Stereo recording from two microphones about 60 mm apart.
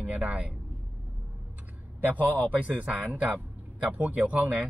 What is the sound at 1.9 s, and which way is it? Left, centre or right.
Speech, right.